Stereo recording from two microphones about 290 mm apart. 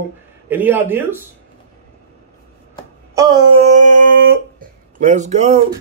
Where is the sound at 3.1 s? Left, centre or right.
Centre.